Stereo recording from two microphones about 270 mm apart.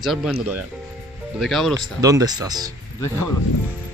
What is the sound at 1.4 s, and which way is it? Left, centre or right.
Speech, centre.